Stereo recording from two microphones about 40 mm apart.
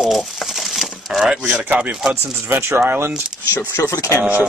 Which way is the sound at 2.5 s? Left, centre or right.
Right.